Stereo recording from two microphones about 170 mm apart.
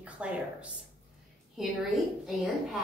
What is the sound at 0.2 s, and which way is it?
Speech, 5° right (ahead or behind).